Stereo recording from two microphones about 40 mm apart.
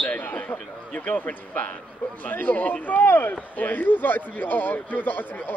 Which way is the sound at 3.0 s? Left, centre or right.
Left.